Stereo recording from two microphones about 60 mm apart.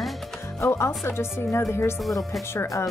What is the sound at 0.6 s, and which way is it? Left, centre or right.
Speech, left.